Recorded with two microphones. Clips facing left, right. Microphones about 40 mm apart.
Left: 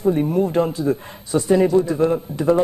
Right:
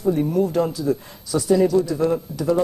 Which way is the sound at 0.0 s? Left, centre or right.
Left.